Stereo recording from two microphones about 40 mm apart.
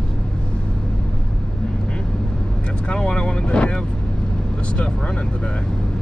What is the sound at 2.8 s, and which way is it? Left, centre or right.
Vehicle, left.